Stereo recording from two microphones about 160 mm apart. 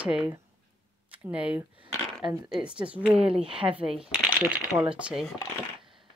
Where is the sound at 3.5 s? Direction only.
35° right (ahead or behind).